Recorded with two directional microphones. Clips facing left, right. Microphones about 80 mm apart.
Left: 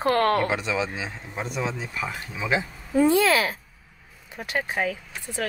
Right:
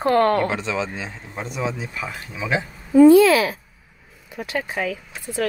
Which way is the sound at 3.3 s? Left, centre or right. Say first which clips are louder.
Right 4 dB; left.